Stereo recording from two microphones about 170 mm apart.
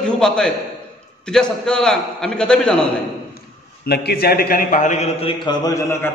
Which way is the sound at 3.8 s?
70° left (ahead or behind).